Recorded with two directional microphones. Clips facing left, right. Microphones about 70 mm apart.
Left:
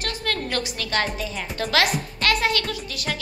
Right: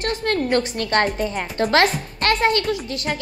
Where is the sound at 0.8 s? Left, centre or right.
Right.